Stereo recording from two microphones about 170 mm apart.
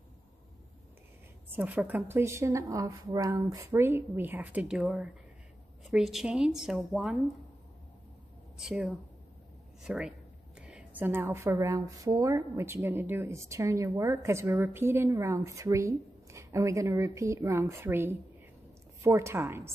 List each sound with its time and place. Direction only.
1.5 s speech: 10° right (ahead or behind)
8.5 s speech: 5° right (ahead or behind)